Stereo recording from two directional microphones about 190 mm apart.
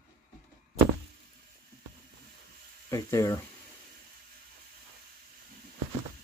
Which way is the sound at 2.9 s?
20° left (ahead or behind).